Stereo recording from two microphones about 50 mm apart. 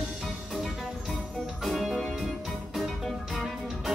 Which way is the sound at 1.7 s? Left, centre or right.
Centre.